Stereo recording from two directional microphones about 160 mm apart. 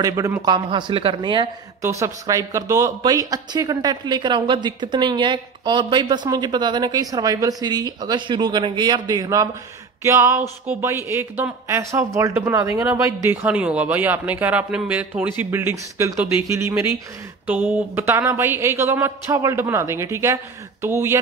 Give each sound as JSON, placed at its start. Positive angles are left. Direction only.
{"t": 0.0, "sound": "speech", "side_deg": -20}
{"t": 1.8, "sound": "speech", "side_deg": -20}